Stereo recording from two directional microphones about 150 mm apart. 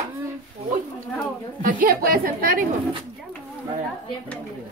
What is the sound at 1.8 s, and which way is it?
Speech, 75° right (ahead or behind).